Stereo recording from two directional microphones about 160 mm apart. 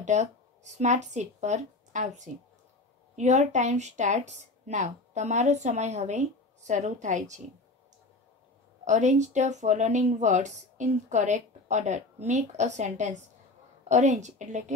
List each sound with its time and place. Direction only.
0.0 s speech: 45° right (ahead or behind)
8.8 s speech: 50° right (ahead or behind)